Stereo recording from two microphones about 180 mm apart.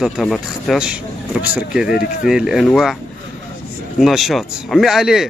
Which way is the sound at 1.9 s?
55° left (ahead or behind).